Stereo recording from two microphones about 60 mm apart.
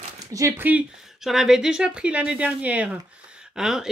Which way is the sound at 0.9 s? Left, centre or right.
Centre.